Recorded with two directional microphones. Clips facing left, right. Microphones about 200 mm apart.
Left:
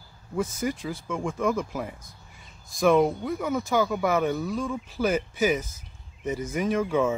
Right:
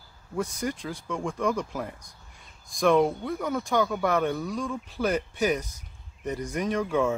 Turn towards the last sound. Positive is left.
turn(degrees=0)  # may be behind; listen again after turning